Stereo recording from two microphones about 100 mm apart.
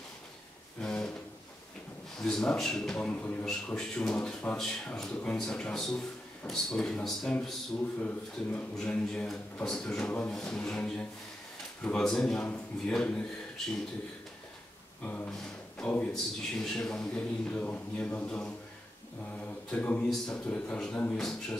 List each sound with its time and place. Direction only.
0.7 s a sound: 5° left (ahead or behind)
2.2 s speech: 5° left (ahead or behind)
3.4 s speech: 5° left (ahead or behind)
8.5 s speech: 10° left (ahead or behind)
15.0 s speech: 15° left (ahead or behind)